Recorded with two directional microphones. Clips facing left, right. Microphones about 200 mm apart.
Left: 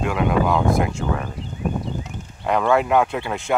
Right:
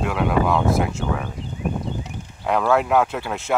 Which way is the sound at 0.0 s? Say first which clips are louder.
Left 1 dB; centre (ahead or behind).